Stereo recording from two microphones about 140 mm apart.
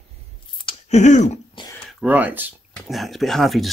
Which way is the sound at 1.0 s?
55° left (ahead or behind).